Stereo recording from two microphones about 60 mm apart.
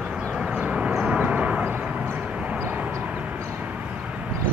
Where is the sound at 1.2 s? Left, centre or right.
Centre.